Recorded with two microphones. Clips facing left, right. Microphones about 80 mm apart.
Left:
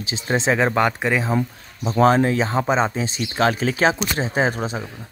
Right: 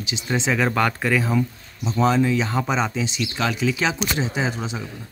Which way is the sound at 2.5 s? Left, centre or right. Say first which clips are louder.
Left 3 dB; left.